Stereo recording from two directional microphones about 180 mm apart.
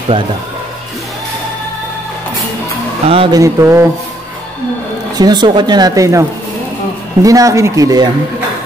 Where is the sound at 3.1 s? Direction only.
30° right (ahead or behind).